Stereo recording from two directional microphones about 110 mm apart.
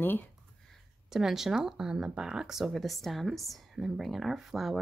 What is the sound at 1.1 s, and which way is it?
Speech, 5° right (ahead or behind).